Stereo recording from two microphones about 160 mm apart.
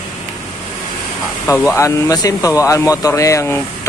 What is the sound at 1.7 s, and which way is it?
Speech, 20° left (ahead or behind).